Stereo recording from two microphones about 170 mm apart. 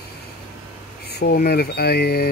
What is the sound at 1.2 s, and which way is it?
Speech, 70° left (ahead or behind).